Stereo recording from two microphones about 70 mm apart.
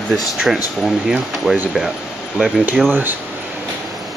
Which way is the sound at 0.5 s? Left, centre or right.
Centre.